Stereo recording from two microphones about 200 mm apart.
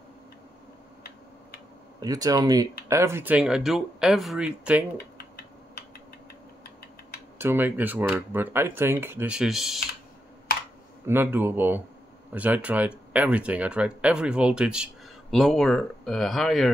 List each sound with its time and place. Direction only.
2.0 s speech: 20° right (ahead or behind)
4.9 s typing: 50° left (ahead or behind)
7.3 s speech: 10° right (ahead or behind)
11.1 s speech: 10° right (ahead or behind)